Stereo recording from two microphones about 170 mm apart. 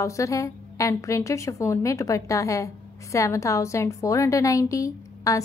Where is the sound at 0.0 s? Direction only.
20° left (ahead or behind).